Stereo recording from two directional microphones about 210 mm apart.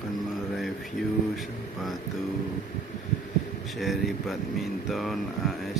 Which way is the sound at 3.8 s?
Centre (ahead or behind).